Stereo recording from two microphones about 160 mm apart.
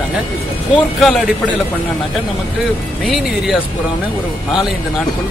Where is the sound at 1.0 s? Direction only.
Centre (ahead or behind).